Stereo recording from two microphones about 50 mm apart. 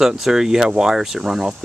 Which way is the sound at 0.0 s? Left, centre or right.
Centre.